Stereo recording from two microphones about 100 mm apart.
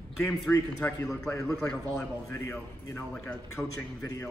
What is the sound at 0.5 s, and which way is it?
Speech, 10° left (ahead or behind).